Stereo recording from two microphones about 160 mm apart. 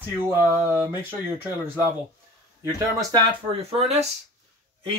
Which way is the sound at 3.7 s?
40° right (ahead or behind).